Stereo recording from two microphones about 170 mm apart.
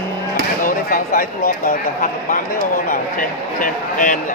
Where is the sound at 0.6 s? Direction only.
55° left (ahead or behind).